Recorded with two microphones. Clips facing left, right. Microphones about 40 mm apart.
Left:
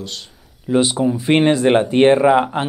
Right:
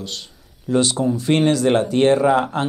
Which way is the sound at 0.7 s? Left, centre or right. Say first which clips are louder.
Left 2 dB; centre.